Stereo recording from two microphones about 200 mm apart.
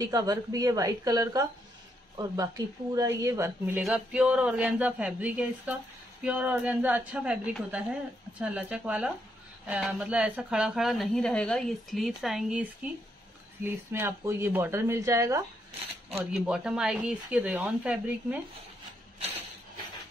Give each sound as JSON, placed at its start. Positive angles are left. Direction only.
{"t": 0.0, "sound": "a woman's voice", "side_deg": -20}
{"t": 16.3, "sound": "speech", "side_deg": -5}